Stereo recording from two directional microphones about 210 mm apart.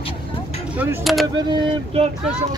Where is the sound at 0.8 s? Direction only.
5° right (ahead or behind).